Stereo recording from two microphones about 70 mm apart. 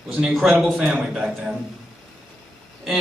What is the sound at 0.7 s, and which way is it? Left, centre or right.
Speech, centre.